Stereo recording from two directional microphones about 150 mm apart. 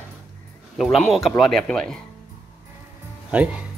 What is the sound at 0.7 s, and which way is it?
Speech, centre (ahead or behind).